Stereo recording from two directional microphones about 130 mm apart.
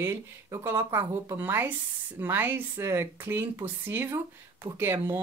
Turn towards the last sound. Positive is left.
turn(degrees=-20)  # may be behind; listen again after turning